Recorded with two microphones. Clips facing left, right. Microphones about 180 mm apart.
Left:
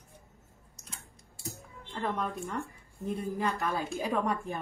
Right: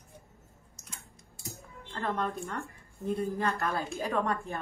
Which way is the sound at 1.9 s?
5° left (ahead or behind).